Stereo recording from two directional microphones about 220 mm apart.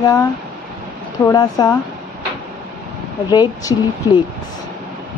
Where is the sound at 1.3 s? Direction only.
15° left (ahead or behind).